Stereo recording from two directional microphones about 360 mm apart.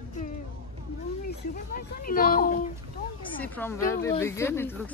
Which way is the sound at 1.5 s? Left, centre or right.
Left.